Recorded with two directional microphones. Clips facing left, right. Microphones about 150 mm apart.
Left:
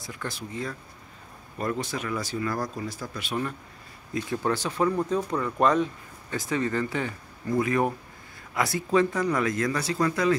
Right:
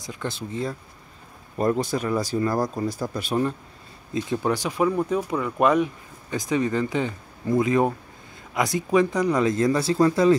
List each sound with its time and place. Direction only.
0.0 s speech: 20° right (ahead or behind)
1.6 s speech: 40° right (ahead or behind)
4.1 s speech: 20° right (ahead or behind)